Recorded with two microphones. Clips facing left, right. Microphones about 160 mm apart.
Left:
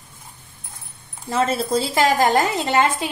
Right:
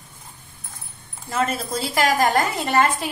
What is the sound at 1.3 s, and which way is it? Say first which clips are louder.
A woman's voice: left 4 dB; 30° left (ahead or behind).